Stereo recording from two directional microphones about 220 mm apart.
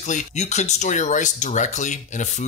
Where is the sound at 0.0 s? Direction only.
30° left (ahead or behind).